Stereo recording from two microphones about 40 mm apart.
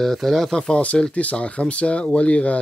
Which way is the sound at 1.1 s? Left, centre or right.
Left.